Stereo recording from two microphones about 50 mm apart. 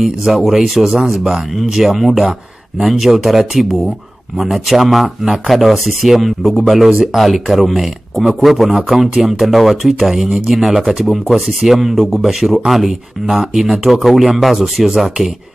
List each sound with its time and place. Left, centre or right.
0.0 s speech: centre
10.5 s speech: centre